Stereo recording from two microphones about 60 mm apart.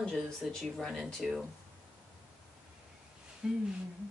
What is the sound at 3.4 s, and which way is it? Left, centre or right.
Speech, centre.